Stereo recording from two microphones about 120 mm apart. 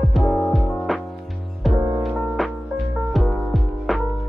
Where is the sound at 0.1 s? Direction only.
Centre (ahead or behind).